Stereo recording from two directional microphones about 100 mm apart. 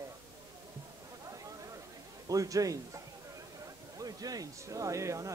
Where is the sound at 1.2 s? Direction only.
35° right (ahead or behind).